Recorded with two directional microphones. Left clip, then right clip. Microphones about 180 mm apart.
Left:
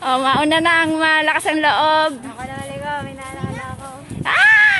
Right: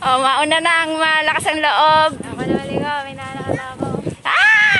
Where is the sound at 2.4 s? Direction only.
60° right (ahead or behind).